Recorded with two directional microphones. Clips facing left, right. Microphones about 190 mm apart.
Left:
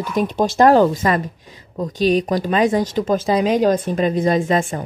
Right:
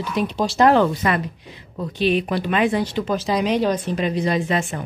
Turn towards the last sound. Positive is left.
turn(degrees=45)  # may be behind; listen again after turning